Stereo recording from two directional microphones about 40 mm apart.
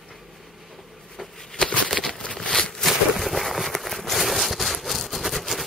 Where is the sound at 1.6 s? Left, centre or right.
Left.